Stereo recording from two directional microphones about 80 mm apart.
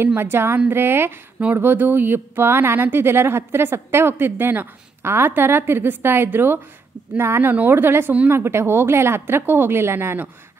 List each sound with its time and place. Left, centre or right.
0.0 s a woman's voice: right